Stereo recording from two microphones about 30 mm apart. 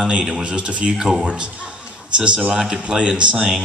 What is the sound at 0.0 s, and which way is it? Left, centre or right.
Speech, right.